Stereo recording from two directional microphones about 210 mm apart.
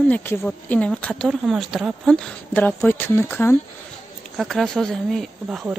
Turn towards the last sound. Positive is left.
turn(degrees=-5)  # may be behind; listen again after turning